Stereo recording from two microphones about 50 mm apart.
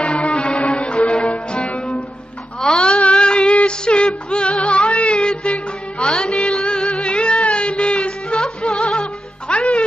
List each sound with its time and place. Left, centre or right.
0.0 s music: left
2.6 s a sound: centre
8.4 s music: centre